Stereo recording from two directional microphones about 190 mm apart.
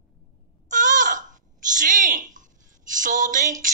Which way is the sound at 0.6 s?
40° right (ahead or behind).